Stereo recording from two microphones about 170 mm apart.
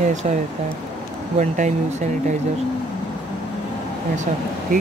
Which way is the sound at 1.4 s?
45° right (ahead or behind).